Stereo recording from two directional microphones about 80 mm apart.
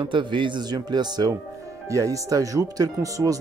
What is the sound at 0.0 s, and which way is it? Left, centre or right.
Speech, right.